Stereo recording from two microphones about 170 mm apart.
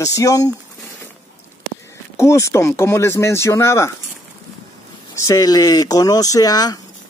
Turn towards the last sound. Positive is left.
turn(degrees=20)  # may be behind; listen again after turning